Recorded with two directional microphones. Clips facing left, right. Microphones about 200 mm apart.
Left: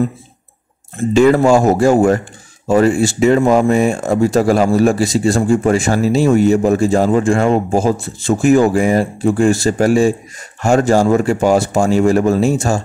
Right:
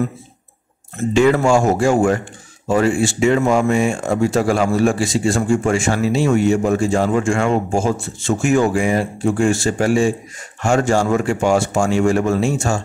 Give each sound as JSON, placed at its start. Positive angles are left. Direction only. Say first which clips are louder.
{"t": 0.9, "sound": "speech", "louder": "left 4 dB", "side_deg": 35}